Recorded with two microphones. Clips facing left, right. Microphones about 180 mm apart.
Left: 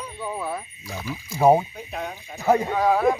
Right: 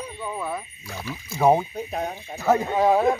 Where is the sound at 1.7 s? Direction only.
40° right (ahead or behind).